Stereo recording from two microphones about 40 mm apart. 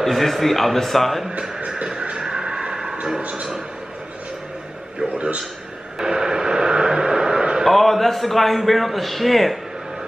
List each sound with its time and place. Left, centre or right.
0.0 s a man's voice: centre
2.2 s a sound: centre
3.2 s a man's voice: right
5.1 s a sound: right
5.9 s vehicle: centre
7.6 s a man's voice: centre